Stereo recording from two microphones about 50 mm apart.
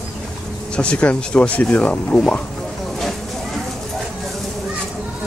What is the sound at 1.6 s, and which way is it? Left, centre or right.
Speech, left.